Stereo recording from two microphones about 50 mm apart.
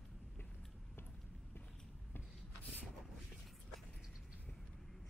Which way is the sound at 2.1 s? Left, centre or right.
Left.